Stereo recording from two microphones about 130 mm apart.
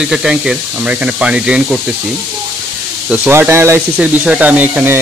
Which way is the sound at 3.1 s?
15° right (ahead or behind).